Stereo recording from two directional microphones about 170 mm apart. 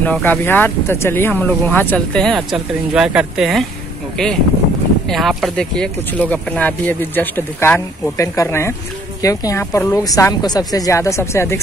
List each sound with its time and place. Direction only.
0.0 s speech: 10° left (ahead or behind)
5.0 s speech: centre (ahead or behind)